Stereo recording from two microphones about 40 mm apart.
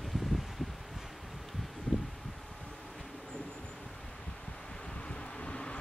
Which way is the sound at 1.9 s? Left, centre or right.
Left.